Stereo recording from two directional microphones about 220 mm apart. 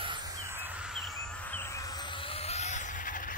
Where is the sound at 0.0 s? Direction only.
20° right (ahead or behind).